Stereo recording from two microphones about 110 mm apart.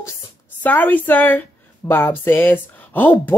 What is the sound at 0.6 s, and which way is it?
Speech, 15° left (ahead or behind).